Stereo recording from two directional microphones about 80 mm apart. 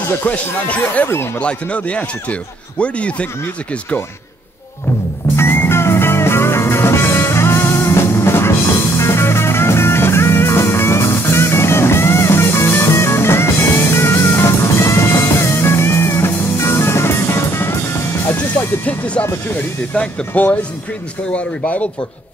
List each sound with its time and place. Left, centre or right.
0.2 s speech: centre
0.9 s speech: left
1.4 s speech: centre
5.3 s music: left
18.5 s speech: centre